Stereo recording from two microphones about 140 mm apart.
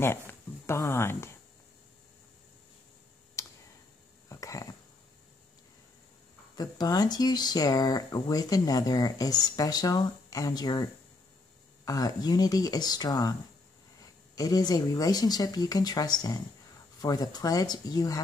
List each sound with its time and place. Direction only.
0.3 s speech: 20° left (ahead or behind)
3.4 s clicking: 20° left (ahead or behind)
4.3 s a sound: 25° left (ahead or behind)
6.5 s speech: 30° left (ahead or behind)
14.3 s speech: 25° left (ahead or behind)